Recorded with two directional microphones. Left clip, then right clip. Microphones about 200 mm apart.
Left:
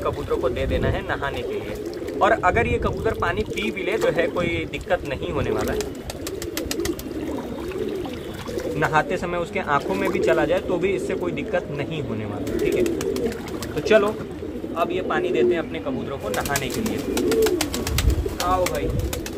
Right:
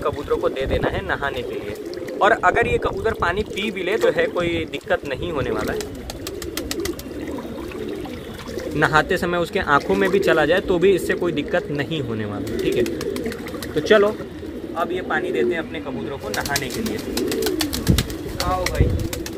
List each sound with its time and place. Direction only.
0.0 s speech: 40° right (ahead or behind)
8.7 s speech: 45° right (ahead or behind)
13.8 s speech: 20° right (ahead or behind)
14.8 s speech: centre (ahead or behind)
17.3 s bird: 50° left (ahead or behind)